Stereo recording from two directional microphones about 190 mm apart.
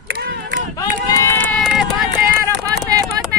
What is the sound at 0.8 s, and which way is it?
Run, 15° left (ahead or behind).